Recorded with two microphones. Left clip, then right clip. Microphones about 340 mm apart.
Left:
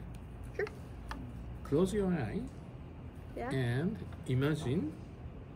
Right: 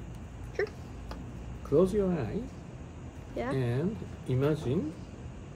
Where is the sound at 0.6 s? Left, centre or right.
Centre.